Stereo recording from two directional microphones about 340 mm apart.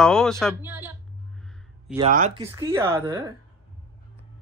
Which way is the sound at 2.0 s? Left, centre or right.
Right.